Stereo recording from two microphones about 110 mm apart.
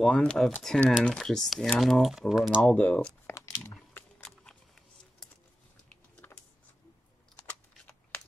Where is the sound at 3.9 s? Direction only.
10° left (ahead or behind).